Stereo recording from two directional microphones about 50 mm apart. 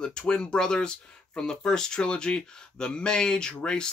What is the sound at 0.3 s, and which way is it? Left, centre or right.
Speech, centre.